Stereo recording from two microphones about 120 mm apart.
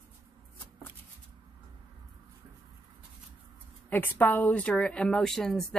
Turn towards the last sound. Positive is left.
turn(degrees=5)  # may be behind; listen again after turning